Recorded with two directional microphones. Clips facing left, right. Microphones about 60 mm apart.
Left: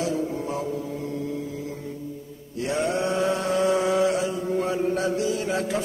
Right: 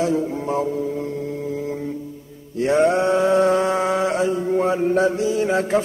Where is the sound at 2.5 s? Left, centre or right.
Right.